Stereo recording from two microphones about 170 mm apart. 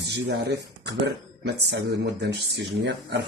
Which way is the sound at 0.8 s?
80° right.